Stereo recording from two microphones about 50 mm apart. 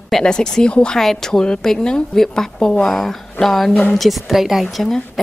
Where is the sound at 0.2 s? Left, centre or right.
Centre.